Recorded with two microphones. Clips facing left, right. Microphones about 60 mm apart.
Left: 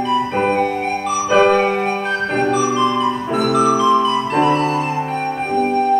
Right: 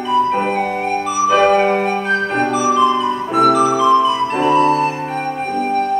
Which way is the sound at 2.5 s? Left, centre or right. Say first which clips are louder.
Right 3 dB; centre.